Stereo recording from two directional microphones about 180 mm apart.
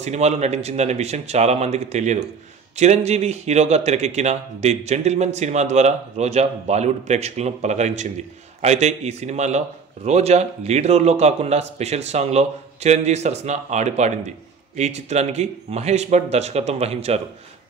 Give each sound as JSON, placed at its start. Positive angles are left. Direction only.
{"t": 0.0, "sound": "speech", "side_deg": -40}